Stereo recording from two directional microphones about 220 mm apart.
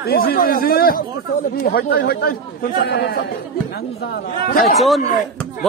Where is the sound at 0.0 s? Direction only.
45° left (ahead or behind).